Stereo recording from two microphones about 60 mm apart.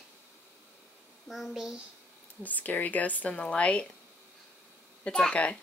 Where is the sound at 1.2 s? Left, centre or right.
Centre.